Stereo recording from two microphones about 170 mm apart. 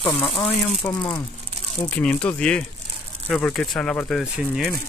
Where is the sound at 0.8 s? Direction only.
20° left (ahead or behind).